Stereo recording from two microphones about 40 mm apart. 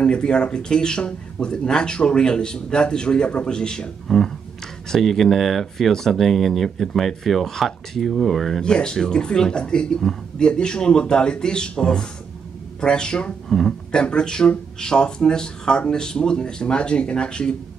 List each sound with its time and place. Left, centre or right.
0.0 s speech: left
4.8 s speech: centre
8.6 s speech: centre
13.5 s speech: centre
14.0 s speech: left